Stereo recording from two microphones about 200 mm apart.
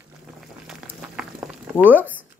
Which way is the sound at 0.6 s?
5° right (ahead or behind).